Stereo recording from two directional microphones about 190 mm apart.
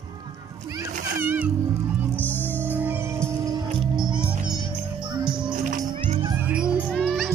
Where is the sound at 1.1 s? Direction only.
10° right (ahead or behind).